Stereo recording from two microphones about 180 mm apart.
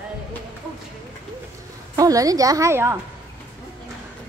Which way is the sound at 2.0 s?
20° right (ahead or behind).